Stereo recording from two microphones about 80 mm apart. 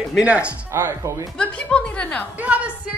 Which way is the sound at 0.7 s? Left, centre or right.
Right.